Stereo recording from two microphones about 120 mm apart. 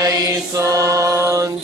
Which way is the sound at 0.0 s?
30° right (ahead or behind).